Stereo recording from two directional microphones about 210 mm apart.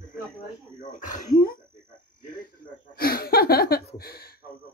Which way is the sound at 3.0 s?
45° left (ahead or behind).